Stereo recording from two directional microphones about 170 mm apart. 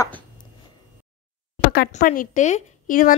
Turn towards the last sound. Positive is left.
turn(degrees=50)  # may be behind; listen again after turning